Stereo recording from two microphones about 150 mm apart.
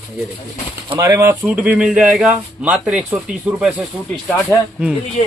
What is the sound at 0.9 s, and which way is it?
Speech, 20° right (ahead or behind).